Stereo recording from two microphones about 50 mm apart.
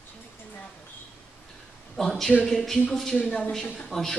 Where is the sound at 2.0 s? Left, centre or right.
Centre.